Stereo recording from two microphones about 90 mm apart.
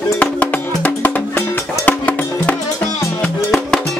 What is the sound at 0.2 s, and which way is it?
Music, 15° left (ahead or behind).